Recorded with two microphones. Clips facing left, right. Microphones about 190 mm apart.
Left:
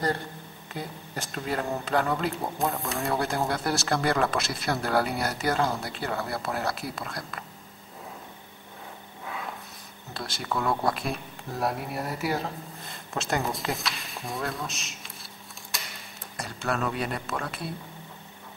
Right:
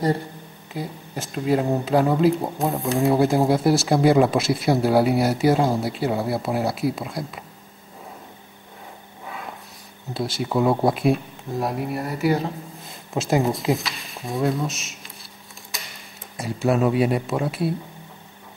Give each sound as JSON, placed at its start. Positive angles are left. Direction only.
{"t": 0.7, "sound": "speech", "side_deg": 0}
{"t": 10.1, "sound": "speech", "side_deg": 0}
{"t": 10.5, "sound": "speech", "side_deg": -25}
{"t": 10.9, "sound": "speech", "side_deg": 0}
{"t": 15.7, "sound": "tick-tock", "side_deg": 0}
{"t": 16.3, "sound": "speech", "side_deg": 0}